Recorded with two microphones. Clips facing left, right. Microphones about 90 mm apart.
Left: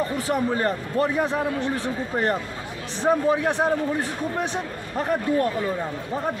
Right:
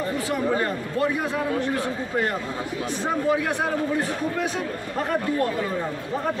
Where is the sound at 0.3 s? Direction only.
35° left (ahead or behind).